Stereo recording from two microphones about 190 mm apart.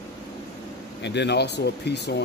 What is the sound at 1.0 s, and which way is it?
Speech, 65° left (ahead or behind).